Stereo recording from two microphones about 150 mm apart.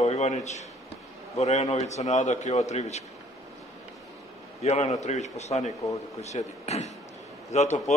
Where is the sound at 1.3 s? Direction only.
45° left (ahead or behind).